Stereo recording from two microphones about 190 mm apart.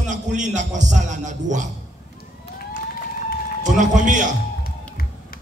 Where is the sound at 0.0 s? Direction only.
40° right (ahead or behind).